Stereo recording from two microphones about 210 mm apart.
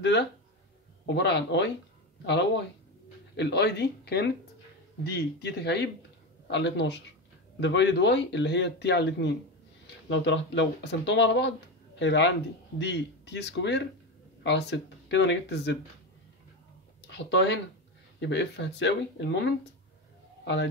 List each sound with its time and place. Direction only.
1.0 s speech: 55° left (ahead or behind)
17.3 s speech: 55° left (ahead or behind)